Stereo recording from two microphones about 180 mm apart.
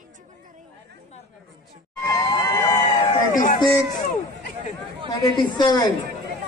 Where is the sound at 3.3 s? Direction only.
45° left (ahead or behind).